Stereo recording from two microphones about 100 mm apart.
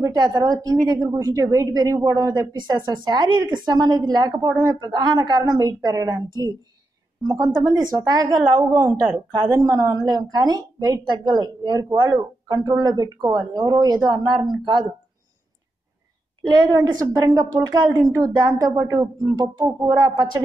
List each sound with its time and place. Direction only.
0.0 s a woman's voice: 40° right (ahead or behind)
7.7 s a woman's voice: 35° right (ahead or behind)
16.4 s a woman's voice: 40° right (ahead or behind)